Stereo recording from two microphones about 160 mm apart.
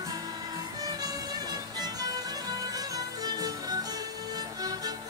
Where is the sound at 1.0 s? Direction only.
25° right (ahead or behind).